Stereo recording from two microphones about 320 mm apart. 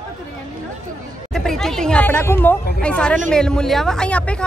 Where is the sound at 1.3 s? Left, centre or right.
Centre.